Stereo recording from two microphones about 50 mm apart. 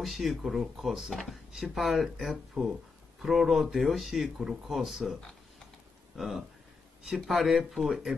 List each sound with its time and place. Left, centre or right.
0.0 s speech: centre
2.6 s speech: right
3.2 s speech: centre
6.1 s speech: centre